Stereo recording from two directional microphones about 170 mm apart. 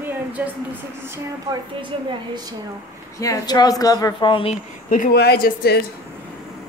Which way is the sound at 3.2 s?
20° left (ahead or behind).